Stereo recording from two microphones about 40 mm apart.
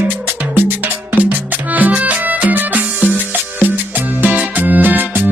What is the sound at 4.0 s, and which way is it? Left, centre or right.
Music, right.